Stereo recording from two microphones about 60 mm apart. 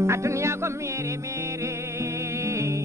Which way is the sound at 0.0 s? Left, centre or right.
Right.